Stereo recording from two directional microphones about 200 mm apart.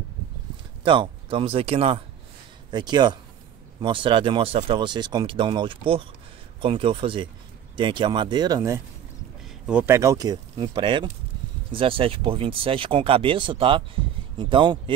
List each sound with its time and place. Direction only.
0.8 s speech: 25° right (ahead or behind)